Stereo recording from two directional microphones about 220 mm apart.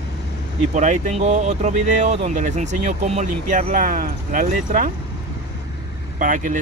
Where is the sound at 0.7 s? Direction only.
35° right (ahead or behind).